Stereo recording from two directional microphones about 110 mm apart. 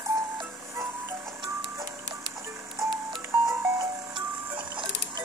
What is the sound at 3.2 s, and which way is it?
Music, 25° right (ahead or behind).